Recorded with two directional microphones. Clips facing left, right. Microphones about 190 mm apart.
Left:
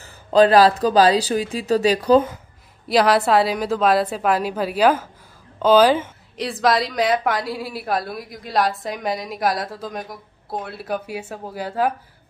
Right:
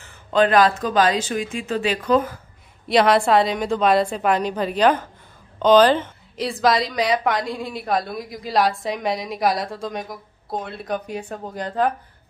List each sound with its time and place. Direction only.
0.0 s speech: 35° left (ahead or behind)
2.9 s a woman's voice: centre (ahead or behind)